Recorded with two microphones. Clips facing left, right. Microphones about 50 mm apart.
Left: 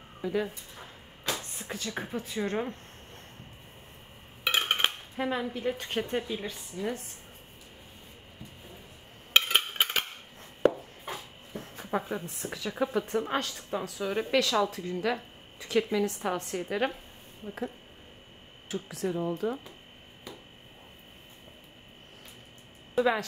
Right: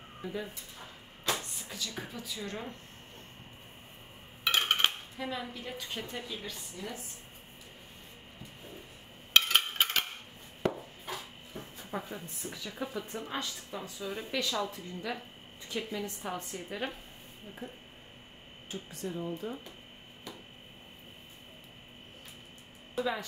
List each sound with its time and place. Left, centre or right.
0.2 s speech: left
1.6 s a woman's voice: left
4.5 s dishes: centre
5.1 s a woman's voice: left
6.2 s a woman's voice: left
9.3 s a sound: centre
11.7 s a woman's voice: left
18.7 s speech: left
22.9 s speech: left